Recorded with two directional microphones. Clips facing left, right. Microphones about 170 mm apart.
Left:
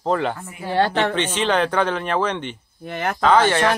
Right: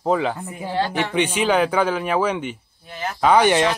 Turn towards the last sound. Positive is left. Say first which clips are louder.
# even
turn(degrees=-15)  # may be behind; listen again after turning